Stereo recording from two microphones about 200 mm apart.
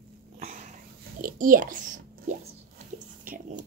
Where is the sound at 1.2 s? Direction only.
45° right (ahead or behind).